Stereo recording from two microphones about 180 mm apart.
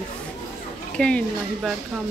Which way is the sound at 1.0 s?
5° left (ahead or behind).